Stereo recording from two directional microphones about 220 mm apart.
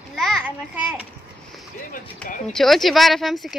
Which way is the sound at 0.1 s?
Centre (ahead or behind).